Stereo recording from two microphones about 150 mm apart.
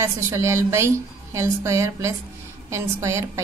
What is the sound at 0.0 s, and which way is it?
A woman's voice, 20° right (ahead or behind).